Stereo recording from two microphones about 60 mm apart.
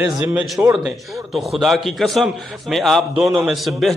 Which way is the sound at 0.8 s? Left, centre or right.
Centre.